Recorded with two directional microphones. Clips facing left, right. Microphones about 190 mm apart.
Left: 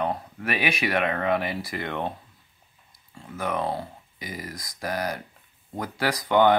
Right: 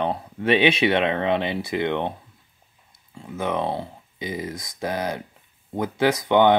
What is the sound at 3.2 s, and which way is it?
Speech, 20° right (ahead or behind).